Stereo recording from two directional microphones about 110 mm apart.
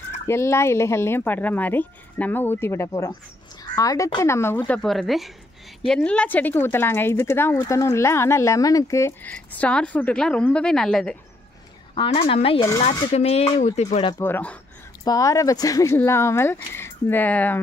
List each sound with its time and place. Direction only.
0.3 s speech: 25° left (ahead or behind)
4.7 s speech: centre (ahead or behind)
5.9 s speech: 10° left (ahead or behind); by 9.1 s 30° left (ahead or behind)
9.2 s a woman's voice: 15° left (ahead or behind)
11.9 s a woman's voice: 55° left (ahead or behind)
12.8 s speech: 70° left (ahead or behind)
14.2 s a woman's voice: 15° left (ahead or behind)
15.0 s speech: 30° left (ahead or behind); by 17.6 s 15° left (ahead or behind)